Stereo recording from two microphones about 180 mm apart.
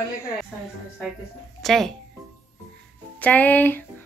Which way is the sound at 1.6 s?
Centre (ahead or behind).